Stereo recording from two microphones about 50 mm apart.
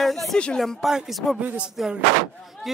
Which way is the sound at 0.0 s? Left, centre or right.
Centre.